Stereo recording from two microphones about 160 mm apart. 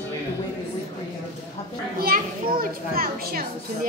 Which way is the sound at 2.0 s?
65° right (ahead or behind).